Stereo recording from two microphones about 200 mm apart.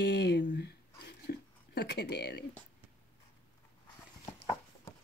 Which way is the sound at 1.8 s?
55° left (ahead or behind).